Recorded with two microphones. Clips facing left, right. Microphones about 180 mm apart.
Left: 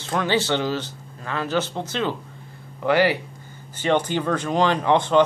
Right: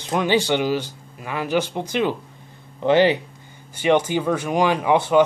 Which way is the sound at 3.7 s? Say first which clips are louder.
Right 3 dB; 10° right (ahead or behind).